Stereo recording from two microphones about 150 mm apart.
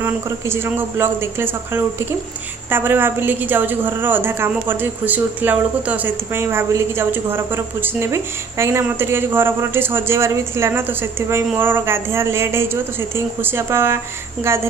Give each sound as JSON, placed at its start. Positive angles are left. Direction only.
{"t": 0.0, "sound": "a woman's voice", "side_deg": -15}